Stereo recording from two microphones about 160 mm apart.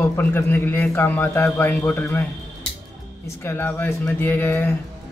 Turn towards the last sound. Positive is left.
turn(degrees=10)  # may be behind; listen again after turning